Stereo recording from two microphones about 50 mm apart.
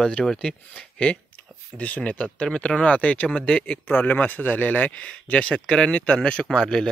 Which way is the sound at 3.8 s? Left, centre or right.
Left.